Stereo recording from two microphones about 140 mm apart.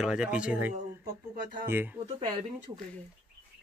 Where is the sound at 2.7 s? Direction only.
30° right (ahead or behind).